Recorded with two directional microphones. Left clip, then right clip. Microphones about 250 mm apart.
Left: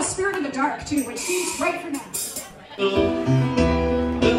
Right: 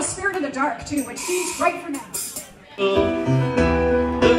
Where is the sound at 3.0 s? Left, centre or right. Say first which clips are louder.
Right 1 dB; centre.